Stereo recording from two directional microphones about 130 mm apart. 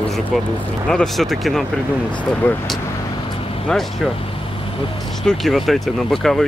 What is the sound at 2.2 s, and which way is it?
Speech, 15° left (ahead or behind).